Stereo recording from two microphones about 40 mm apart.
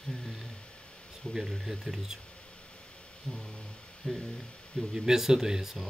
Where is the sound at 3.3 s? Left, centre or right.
Left.